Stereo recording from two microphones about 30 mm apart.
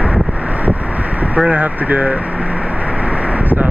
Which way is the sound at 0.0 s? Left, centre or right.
Right.